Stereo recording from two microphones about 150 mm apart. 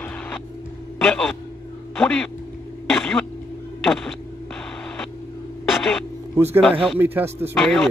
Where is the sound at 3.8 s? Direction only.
Centre (ahead or behind).